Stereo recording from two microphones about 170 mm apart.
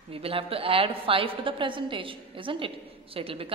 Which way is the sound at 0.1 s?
35° right (ahead or behind).